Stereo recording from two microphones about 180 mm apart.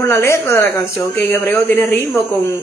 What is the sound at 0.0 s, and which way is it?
Speech, 15° left (ahead or behind).